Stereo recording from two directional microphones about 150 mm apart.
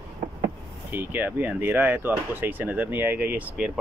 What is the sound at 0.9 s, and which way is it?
Speech, 15° right (ahead or behind).